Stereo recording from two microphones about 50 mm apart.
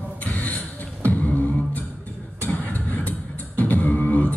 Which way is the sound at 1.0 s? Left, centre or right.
Left.